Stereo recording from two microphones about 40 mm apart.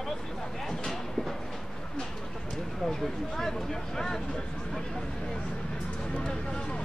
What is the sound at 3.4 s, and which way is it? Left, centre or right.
Speech, centre.